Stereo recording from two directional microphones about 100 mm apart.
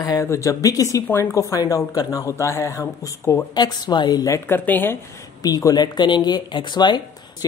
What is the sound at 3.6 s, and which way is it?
Speech, 45° left (ahead or behind).